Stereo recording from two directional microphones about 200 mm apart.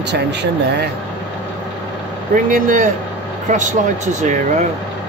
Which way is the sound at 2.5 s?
40° right (ahead or behind).